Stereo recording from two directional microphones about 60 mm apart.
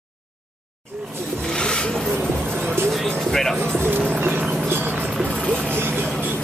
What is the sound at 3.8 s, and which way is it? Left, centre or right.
Music, right.